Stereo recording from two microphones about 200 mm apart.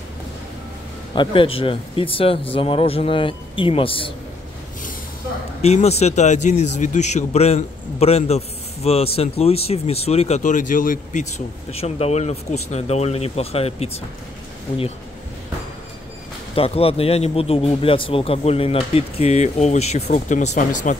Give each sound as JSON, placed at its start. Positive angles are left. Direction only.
{"t": 1.1, "sound": "a man's voice", "side_deg": 25}
{"t": 5.6, "sound": "speech", "side_deg": 30}
{"t": 16.5, "sound": "a man's voice", "side_deg": 30}